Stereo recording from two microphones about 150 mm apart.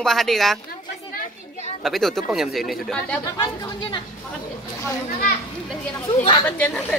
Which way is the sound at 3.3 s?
30° left (ahead or behind).